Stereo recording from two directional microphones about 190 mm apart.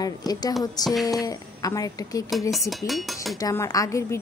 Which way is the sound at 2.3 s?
Centre (ahead or behind).